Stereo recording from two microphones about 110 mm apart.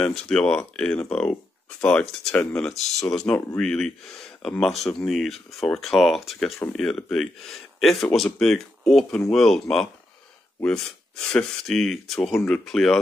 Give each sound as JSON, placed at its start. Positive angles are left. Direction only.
{"t": 0.0, "sound": "speech", "side_deg": 5}